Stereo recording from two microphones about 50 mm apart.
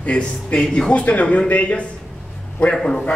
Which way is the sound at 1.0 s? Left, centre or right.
Left.